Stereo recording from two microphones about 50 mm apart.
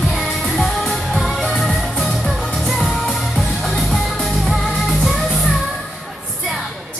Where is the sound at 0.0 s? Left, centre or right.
Centre.